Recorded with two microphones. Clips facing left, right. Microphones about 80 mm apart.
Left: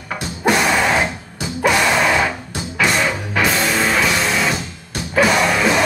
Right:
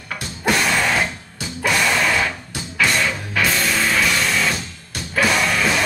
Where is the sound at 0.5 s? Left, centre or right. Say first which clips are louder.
Left 3 dB; centre.